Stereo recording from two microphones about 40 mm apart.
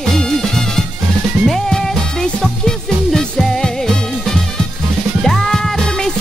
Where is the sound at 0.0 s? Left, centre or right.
Centre.